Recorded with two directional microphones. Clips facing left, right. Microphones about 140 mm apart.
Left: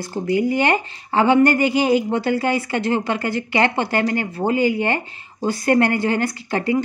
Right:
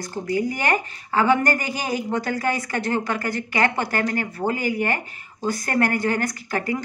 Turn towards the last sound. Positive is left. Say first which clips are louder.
# left 4 dB
turn(degrees=25)  # may be behind; listen again after turning